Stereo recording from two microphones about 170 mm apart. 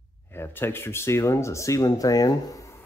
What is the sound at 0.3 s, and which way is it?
Speech, 15° left (ahead or behind).